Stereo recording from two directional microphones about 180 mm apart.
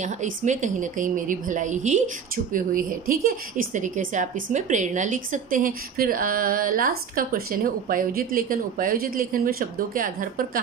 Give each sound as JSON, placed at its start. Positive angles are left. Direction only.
{"t": 0.0, "sound": "a woman's voice", "side_deg": -45}